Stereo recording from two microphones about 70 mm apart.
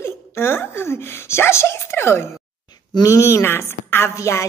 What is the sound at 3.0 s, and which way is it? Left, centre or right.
A woman's voice, left.